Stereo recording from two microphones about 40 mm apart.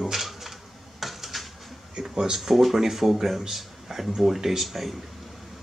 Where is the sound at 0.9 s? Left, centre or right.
Centre.